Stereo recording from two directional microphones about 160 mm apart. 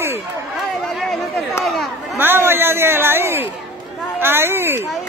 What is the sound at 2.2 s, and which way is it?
A man's voice, 15° right (ahead or behind).